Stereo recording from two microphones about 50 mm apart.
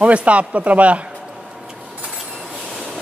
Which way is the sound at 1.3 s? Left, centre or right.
Centre.